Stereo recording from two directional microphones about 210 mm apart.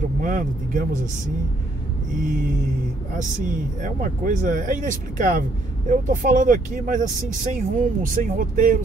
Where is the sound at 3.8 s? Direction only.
40° right (ahead or behind).